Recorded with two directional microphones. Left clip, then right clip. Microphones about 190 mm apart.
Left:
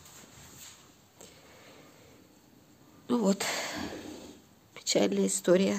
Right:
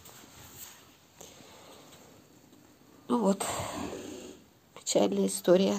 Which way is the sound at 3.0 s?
5° left (ahead or behind).